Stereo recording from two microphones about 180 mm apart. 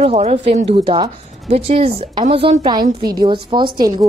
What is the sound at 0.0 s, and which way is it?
Speech, 35° right (ahead or behind).